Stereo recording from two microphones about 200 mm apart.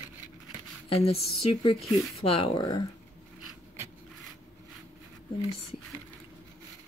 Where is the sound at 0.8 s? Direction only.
30° left (ahead or behind).